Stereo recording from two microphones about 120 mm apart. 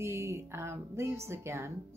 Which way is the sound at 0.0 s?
25° right (ahead or behind).